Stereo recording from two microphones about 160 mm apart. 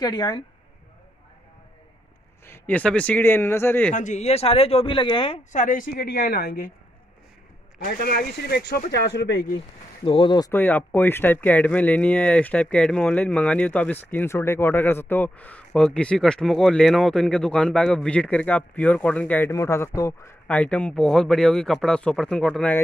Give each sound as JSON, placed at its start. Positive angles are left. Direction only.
{"t": 0.0, "sound": "a woman's voice", "side_deg": 25}
{"t": 2.4, "sound": "speech", "side_deg": 15}
{"t": 3.9, "sound": "speech", "side_deg": 50}
{"t": 5.5, "sound": "speech", "side_deg": 55}
{"t": 7.8, "sound": "speech", "side_deg": 65}
{"t": 10.0, "sound": "speech", "side_deg": 30}
{"t": 10.5, "sound": "speech", "side_deg": 10}
{"t": 20.4, "sound": "a man's voice", "side_deg": 10}